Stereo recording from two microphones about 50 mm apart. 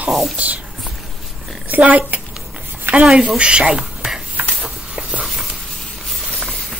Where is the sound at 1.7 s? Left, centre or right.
Right.